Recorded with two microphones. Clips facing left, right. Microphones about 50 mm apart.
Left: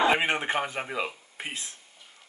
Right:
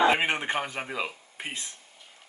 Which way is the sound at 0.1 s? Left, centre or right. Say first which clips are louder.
Left 1 dB; centre.